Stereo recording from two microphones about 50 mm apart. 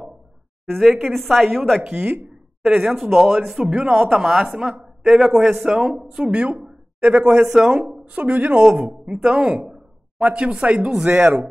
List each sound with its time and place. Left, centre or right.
0.7 s a woman's voice: centre
1.8 s speech: centre
2.6 s speech: centre
3.7 s speech: centre
6.4 s speech: right
7.4 s speech: centre
8.1 s a woman's voice: right